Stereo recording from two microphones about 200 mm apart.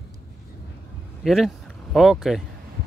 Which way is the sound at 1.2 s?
Centre (ahead or behind).